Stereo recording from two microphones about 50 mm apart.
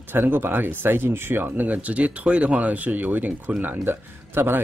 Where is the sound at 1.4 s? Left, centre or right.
Right.